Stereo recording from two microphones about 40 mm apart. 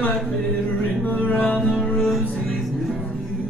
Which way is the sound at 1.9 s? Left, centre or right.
Centre.